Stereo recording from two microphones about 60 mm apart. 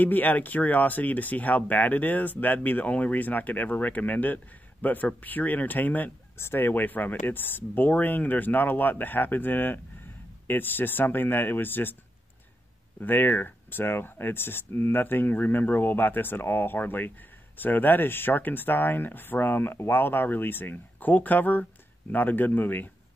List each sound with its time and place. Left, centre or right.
0.0 s speech: left
6.3 s speech: left
13.0 s speech: left